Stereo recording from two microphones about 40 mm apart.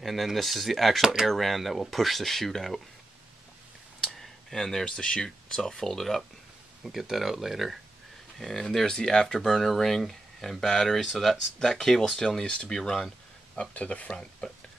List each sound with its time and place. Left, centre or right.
0.0 s speech: centre
4.0 s a sound: centre
4.6 s speech: centre
6.9 s speech: centre
8.4 s speech: centre
12.4 s speech: left
12.7 s speech: centre
13.7 s speech: left